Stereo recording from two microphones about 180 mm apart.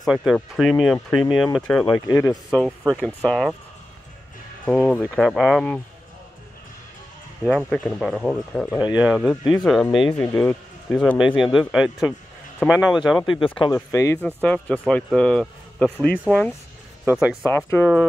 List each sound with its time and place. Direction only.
0.0 s speech: centre (ahead or behind)
1.9 s speech: 20° left (ahead or behind)
3.3 s speech: centre (ahead or behind)
4.6 s speech: 5° left (ahead or behind)
7.4 s speech: 5° right (ahead or behind)
13.2 s speech: 30° left (ahead or behind)
13.9 s speech: 15° left (ahead or behind)
14.2 s speech: 5° left (ahead or behind)
17.0 s speech: 5° right (ahead or behind)
17.5 s speech: 10° left (ahead or behind)